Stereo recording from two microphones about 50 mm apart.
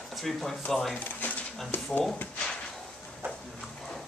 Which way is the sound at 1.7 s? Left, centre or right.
Left.